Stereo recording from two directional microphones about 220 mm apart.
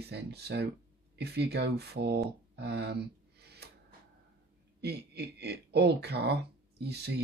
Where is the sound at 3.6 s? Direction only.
50° right (ahead or behind).